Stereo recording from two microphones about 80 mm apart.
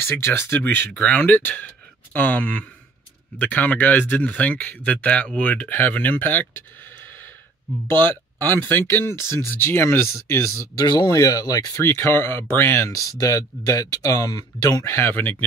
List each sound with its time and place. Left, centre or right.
0.0 s speech: left
10.9 s speech: left
11.8 s speech: left
14.9 s speech: left